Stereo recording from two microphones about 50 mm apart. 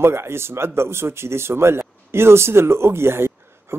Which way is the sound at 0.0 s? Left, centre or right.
Right.